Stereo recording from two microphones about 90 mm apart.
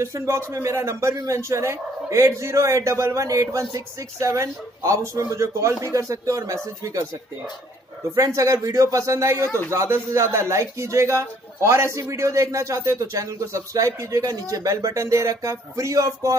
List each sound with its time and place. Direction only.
0.0 s a man's voice: 35° right (ahead or behind)
8.4 s a man's voice: 40° right (ahead or behind)